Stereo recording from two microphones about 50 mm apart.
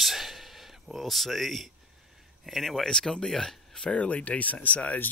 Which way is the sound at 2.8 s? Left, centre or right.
Centre.